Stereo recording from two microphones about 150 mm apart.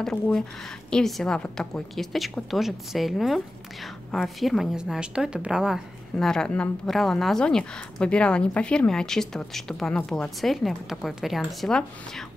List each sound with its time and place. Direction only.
0.0 s a woman's voice: 5° left (ahead or behind)